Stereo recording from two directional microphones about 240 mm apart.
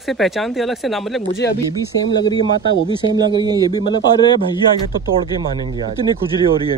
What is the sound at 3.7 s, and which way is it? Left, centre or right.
Speech, centre.